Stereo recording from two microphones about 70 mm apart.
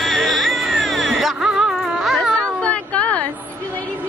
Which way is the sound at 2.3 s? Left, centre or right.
Centre.